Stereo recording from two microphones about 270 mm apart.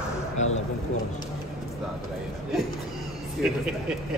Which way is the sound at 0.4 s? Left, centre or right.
Left.